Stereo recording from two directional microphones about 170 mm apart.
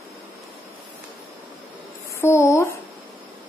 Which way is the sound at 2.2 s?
15° left (ahead or behind).